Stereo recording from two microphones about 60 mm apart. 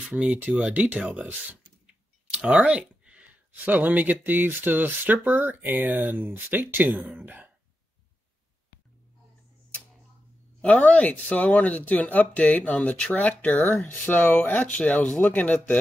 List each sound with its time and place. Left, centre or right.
0.1 s speech: centre
10.9 s speech: left
14.0 s speech: left